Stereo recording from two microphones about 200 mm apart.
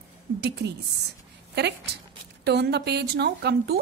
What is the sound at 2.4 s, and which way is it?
A woman's voice, 55° right (ahead or behind).